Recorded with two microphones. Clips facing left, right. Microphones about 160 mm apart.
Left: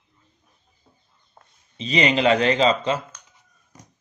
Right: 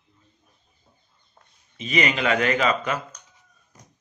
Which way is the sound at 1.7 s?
30° left (ahead or behind).